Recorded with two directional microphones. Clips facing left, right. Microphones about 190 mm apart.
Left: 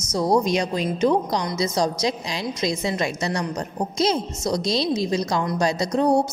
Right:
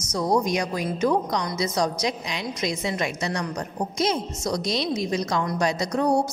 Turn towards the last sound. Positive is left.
turn(degrees=25)  # may be behind; listen again after turning